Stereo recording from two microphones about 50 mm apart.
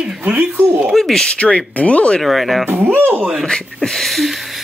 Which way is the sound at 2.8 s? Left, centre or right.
Right.